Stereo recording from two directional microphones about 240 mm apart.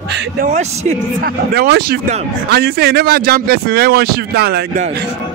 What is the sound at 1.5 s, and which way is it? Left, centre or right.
A man's voice, right.